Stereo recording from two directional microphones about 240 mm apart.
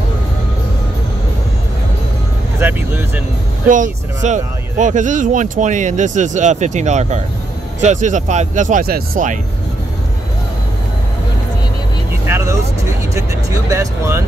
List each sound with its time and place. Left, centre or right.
2.6 s vehicle: centre
3.6 s speech: right
12.1 s vehicle: centre
13.1 s speech: centre